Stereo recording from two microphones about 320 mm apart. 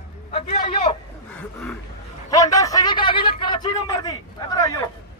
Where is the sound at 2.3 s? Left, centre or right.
Centre.